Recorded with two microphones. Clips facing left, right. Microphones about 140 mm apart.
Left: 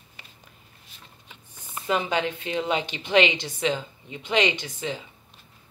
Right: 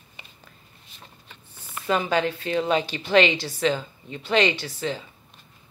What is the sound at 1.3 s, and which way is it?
Speech, 20° left (ahead or behind).